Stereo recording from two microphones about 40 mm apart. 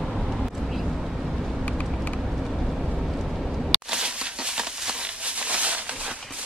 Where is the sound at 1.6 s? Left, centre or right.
Left.